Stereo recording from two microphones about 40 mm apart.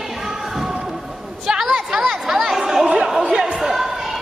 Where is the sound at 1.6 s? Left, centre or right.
Centre.